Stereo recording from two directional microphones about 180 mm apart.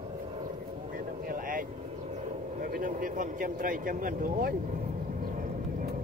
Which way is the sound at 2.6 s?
50° right (ahead or behind).